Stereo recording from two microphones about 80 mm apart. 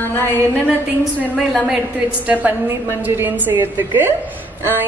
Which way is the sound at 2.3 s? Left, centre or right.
Right.